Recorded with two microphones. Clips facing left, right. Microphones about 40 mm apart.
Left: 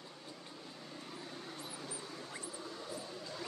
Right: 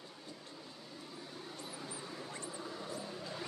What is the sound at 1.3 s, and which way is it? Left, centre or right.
Vehicle, centre.